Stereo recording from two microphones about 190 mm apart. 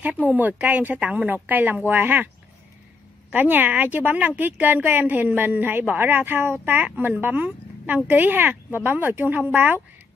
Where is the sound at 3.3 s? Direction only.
10° right (ahead or behind).